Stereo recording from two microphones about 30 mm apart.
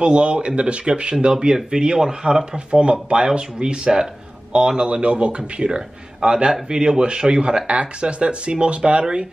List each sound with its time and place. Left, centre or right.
0.0 s speech: right
1.4 s a man's voice: right
2.5 s speech: right
6.2 s speech: right
6.7 s a man's voice: right
7.6 s speech: right